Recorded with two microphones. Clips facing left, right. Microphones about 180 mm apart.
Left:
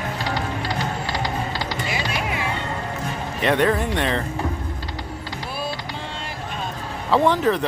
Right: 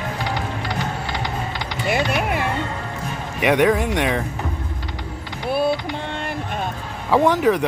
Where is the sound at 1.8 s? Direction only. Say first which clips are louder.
Right 10 dB; 55° right (ahead or behind).